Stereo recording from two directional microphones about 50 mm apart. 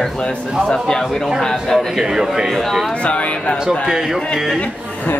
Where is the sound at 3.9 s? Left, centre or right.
Centre.